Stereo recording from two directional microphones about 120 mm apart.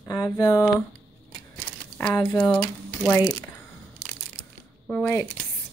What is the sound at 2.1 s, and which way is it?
Speech, 25° left (ahead or behind).